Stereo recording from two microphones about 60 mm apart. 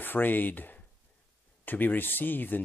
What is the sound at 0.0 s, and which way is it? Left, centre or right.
Speech, left.